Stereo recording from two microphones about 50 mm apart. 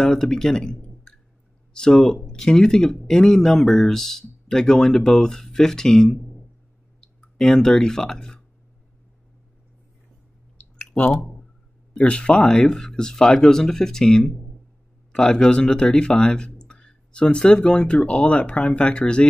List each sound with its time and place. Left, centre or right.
0.0 s speech: centre
11.9 s speech: left